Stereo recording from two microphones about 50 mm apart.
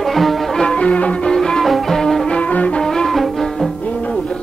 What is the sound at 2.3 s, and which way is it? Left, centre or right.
Music, left.